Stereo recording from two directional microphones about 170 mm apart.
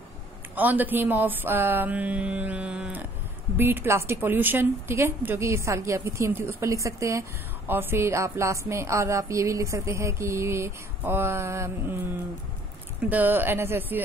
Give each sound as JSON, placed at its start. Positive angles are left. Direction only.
{"t": 0.6, "sound": "a woman's voice", "side_deg": -10}
{"t": 13.1, "sound": "a woman's voice", "side_deg": -10}